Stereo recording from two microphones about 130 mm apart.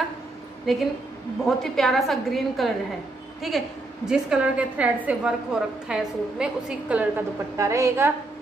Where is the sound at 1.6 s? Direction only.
Centre (ahead or behind).